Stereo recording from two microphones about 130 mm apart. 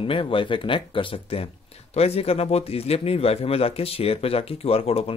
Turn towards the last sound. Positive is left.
turn(degrees=50)  # may be behind; listen again after turning